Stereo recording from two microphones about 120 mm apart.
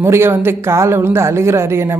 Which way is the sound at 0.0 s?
20° right (ahead or behind).